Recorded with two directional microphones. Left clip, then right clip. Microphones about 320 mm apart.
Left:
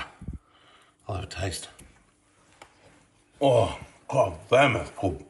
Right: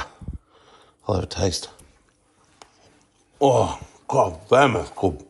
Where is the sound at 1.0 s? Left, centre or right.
Centre.